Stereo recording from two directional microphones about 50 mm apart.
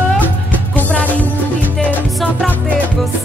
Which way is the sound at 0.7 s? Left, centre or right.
Left.